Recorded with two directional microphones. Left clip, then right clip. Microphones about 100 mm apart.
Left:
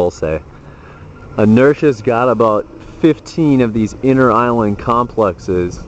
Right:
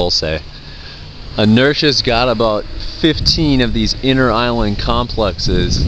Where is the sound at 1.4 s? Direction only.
15° right (ahead or behind).